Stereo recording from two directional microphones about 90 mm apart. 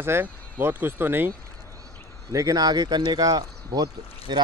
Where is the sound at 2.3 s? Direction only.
40° right (ahead or behind).